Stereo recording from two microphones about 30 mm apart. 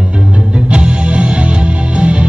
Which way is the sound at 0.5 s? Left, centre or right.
Right.